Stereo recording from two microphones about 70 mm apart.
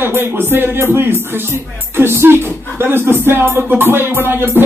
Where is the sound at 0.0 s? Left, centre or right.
Right.